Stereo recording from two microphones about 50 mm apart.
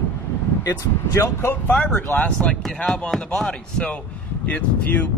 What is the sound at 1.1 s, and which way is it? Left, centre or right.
Speech, left.